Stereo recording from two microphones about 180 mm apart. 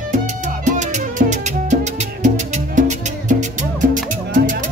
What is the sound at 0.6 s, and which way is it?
Music, 40° right (ahead or behind).